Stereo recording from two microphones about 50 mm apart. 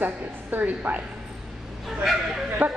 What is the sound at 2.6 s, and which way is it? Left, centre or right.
Speech, right.